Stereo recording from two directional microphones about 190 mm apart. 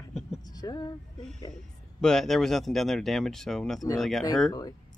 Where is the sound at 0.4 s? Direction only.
20° left (ahead or behind).